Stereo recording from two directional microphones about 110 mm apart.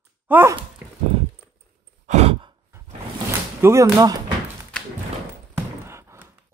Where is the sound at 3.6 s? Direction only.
30° right (ahead or behind).